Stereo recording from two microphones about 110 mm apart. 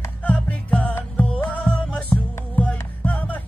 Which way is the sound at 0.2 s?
15° left (ahead or behind).